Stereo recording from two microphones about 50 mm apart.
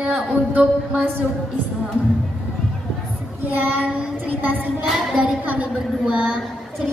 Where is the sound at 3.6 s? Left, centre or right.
Right.